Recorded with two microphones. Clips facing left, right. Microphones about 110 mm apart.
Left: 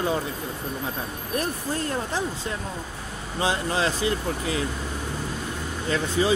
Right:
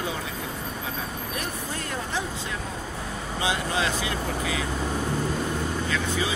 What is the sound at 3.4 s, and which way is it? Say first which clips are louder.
Speech: left 2 dB; 35° left (ahead or behind).